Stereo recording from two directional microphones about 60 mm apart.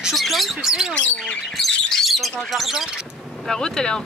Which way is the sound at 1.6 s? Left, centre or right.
Centre.